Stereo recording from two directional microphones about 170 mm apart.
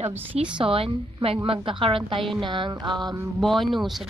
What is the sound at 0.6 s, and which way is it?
A woman's voice, 35° right (ahead or behind).